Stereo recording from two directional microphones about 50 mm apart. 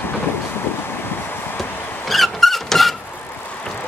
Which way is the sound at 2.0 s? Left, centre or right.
Centre.